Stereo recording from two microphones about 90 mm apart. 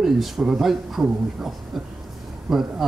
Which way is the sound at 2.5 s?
5° right (ahead or behind).